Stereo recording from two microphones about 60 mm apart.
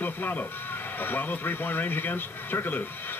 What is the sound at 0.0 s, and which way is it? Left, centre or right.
Speech, left.